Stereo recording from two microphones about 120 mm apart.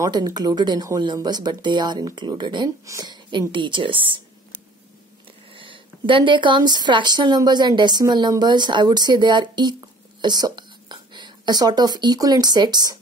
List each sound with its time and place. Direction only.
0.0 s speech: 35° right (ahead or behind)
5.5 s speech: 45° right (ahead or behind)